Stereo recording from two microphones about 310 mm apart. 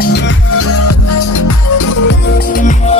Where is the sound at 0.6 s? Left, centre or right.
Left.